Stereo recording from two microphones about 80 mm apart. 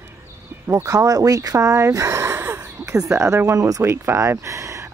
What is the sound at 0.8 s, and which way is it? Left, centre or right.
Speech, right.